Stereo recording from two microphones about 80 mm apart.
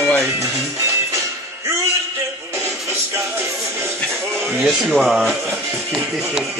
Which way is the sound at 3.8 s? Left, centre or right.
Right.